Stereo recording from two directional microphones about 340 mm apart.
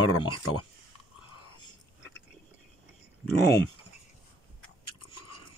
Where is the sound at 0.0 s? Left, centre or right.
Left.